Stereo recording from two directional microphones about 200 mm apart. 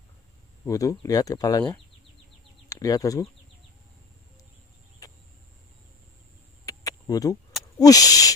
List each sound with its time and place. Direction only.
0.7 s speech: 15° left (ahead or behind)
2.7 s speech: 15° left (ahead or behind)
6.6 s a sound: 20° left (ahead or behind)
7.8 s speech: 20° left (ahead or behind)